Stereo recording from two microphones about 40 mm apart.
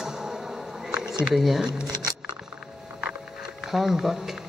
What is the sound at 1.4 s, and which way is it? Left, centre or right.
Speech, centre.